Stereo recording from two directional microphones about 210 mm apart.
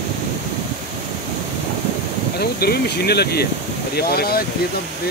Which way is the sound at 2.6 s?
50° left (ahead or behind).